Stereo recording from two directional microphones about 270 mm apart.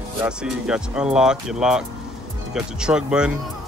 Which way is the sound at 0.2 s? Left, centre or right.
Centre.